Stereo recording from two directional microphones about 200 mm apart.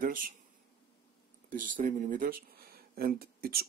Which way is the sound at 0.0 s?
45° right (ahead or behind).